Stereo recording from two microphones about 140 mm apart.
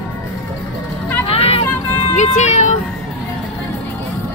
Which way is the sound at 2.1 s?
55° left (ahead or behind).